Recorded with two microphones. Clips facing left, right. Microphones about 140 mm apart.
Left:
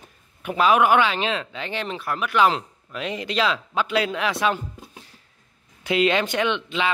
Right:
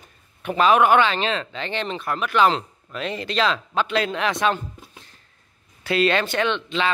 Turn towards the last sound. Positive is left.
turn(degrees=10)  # may be behind; listen again after turning